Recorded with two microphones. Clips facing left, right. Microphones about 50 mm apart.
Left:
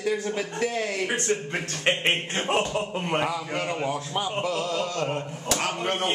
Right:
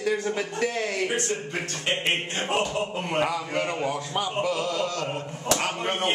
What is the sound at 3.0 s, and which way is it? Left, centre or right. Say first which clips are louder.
Speech: even; centre.